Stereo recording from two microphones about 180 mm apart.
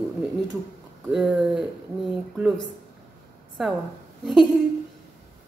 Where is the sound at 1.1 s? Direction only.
5° right (ahead or behind).